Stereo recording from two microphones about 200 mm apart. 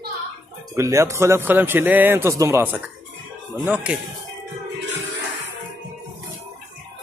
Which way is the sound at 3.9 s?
5° right (ahead or behind).